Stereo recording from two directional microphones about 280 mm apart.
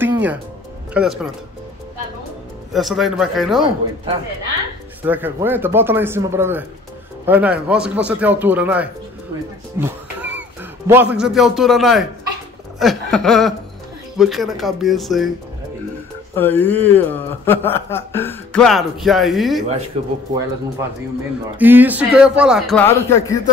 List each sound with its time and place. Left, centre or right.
0.0 s music: centre
0.9 s speech: centre
2.7 s speech: centre
3.6 s speech: centre
16.3 s speech: centre
19.9 s speech: right
21.5 s speech: centre